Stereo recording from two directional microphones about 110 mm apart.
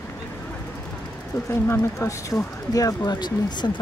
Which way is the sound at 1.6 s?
20° left (ahead or behind).